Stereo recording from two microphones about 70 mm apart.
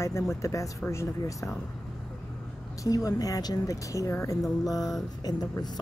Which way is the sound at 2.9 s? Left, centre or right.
Left.